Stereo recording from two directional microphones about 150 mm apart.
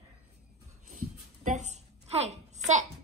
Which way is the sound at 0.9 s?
55° right (ahead or behind).